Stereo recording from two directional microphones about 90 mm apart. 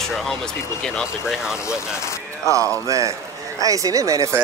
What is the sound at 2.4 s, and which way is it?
Speech, 35° right (ahead or behind).